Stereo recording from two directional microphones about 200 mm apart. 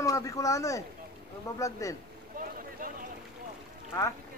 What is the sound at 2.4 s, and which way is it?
Boat, 45° right (ahead or behind).